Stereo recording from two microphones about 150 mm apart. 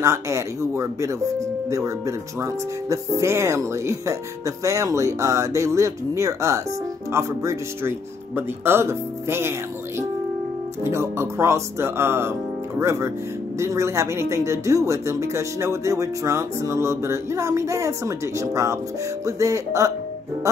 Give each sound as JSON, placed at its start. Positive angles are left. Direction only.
{"t": 0.0, "sound": "speech", "side_deg": -20}